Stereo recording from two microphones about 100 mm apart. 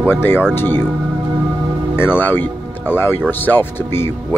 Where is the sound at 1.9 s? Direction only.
20° left (ahead or behind).